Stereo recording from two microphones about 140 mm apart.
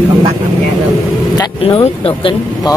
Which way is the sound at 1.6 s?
40° left (ahead or behind).